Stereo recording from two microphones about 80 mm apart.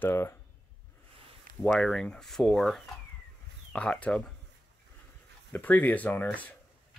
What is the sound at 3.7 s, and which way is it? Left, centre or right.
Speech, centre.